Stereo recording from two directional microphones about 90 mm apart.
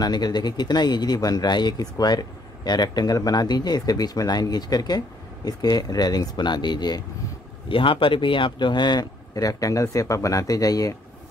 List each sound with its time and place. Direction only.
0.0 s speech: 50° left (ahead or behind)
7.6 s speech: 75° left (ahead or behind); by 11.0 s 40° left (ahead or behind)